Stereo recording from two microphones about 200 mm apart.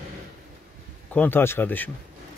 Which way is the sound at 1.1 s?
10° left (ahead or behind).